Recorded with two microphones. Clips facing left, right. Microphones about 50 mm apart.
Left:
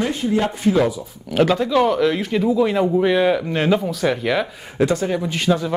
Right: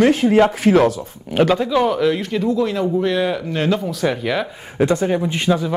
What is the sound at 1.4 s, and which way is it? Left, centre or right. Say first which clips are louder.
Speech: right 1 dB; centre.